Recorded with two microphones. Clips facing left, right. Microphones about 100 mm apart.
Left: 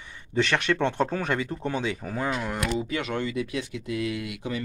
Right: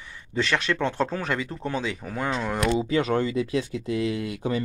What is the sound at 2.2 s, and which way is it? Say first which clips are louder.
Speech: right 3 dB; 25° right (ahead or behind).